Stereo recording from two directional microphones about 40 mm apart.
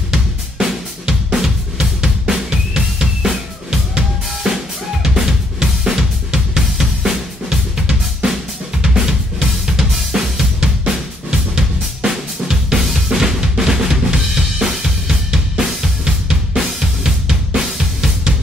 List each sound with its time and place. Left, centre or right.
0.1 s drum kit: centre
4.4 s drum: centre
5.0 s drum kit: centre